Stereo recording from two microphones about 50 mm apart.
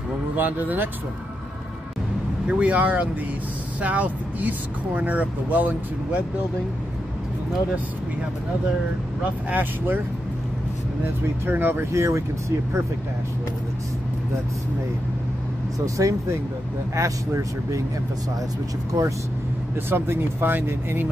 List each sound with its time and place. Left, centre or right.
0.4 s speech: right
2.6 s speech: right
9.5 s speech: right
11.4 s speech: right
11.8 s speech: right
16.0 s speech: right
18.9 s speech: right
19.9 s speech: right